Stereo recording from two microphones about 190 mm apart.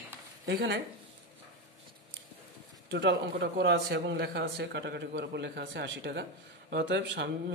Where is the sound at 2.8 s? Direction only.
65° right (ahead or behind).